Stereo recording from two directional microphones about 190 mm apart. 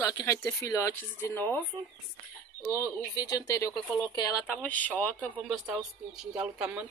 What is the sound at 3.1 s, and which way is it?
Speech, 20° left (ahead or behind).